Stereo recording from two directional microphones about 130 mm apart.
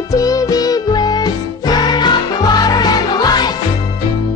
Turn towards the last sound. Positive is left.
turn(degrees=30)  # may be behind; listen again after turning